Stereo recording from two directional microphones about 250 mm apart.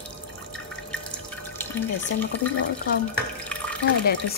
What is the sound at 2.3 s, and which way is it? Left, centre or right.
Speech, left.